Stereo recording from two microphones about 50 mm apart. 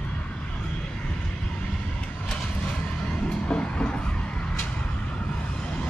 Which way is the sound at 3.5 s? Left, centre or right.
Centre.